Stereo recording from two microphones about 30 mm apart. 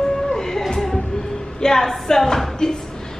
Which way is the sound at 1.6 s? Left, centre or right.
Centre.